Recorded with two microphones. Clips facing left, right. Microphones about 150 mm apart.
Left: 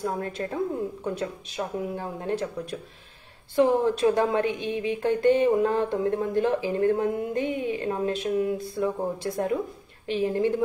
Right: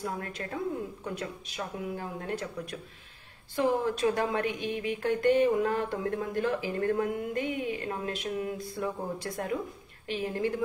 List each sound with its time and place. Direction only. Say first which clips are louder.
0.0 s speech: left 6 dB; 30° left (ahead or behind)